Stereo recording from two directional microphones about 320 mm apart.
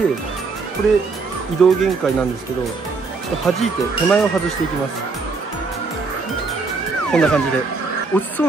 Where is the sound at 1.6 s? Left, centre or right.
Centre.